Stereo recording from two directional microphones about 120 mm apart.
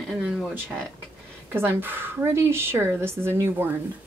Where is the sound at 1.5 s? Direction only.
20° right (ahead or behind).